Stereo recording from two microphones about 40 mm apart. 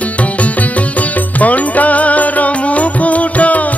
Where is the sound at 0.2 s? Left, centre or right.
Left.